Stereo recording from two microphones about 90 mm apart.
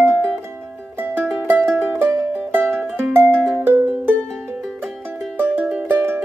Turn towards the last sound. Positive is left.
turn(degrees=-20)  # may be behind; listen again after turning